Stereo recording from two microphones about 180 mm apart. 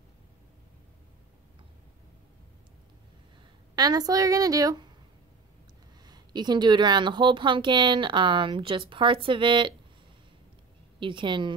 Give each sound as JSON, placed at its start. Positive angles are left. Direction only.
{"t": 3.7, "sound": "a woman's voice", "side_deg": -20}
{"t": 6.0, "sound": "a woman's voice", "side_deg": -25}
{"t": 11.0, "sound": "a woman's voice", "side_deg": -25}